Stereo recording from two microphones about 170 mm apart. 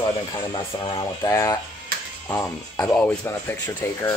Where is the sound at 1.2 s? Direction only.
20° left (ahead or behind).